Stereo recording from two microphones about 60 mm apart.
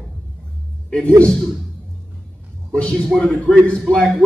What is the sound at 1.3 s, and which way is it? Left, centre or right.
Speech, centre.